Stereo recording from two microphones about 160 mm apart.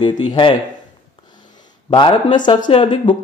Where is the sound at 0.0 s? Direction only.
30° left (ahead or behind).